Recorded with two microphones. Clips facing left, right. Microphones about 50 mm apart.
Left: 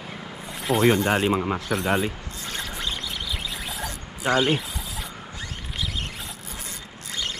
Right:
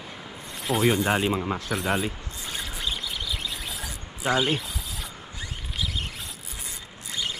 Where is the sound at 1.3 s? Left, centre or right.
Centre.